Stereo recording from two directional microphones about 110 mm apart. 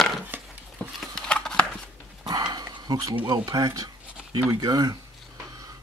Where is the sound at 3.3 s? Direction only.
35° right (ahead or behind).